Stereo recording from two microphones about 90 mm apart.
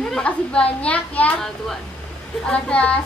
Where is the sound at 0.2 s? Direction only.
15° left (ahead or behind).